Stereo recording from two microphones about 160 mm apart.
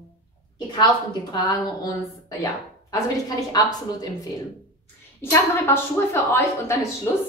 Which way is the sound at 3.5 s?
25° left (ahead or behind).